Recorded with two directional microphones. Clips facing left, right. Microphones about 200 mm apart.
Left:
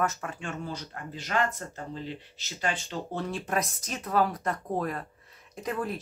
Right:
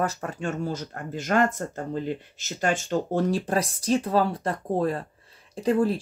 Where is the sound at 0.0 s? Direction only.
35° right (ahead or behind).